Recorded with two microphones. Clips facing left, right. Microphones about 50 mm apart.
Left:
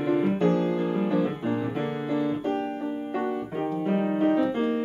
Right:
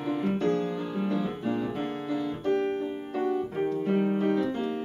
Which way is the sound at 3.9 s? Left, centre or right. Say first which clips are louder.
Left 4 dB; left.